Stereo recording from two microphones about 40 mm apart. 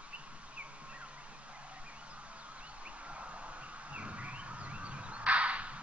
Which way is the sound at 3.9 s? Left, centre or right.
Right.